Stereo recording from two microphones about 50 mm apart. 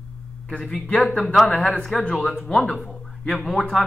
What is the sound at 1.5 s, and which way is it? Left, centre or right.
Speech, left.